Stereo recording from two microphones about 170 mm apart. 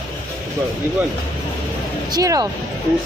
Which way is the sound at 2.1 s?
20° right (ahead or behind).